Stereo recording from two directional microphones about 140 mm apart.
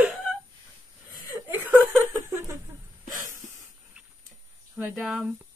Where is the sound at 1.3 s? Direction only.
15° right (ahead or behind).